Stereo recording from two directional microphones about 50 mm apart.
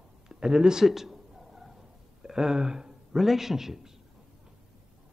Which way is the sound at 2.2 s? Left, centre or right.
Centre.